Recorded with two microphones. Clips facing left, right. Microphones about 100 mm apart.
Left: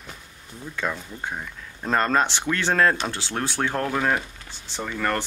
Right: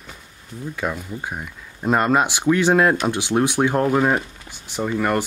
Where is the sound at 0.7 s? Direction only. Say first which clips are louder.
Right 2 dB; 10° right (ahead or behind).